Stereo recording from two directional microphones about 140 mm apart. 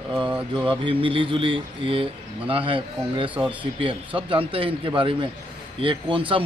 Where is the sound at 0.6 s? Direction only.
35° right (ahead or behind).